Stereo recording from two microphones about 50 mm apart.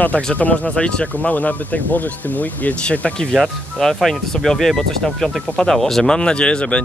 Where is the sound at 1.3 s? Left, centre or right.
Left.